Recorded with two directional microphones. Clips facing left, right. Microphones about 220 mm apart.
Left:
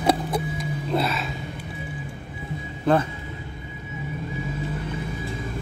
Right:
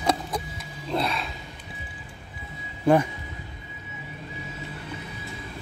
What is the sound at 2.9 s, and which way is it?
Speech, 10° right (ahead or behind).